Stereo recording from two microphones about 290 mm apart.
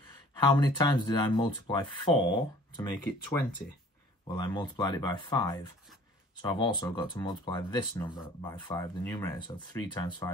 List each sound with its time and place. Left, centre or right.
0.4 s speech: centre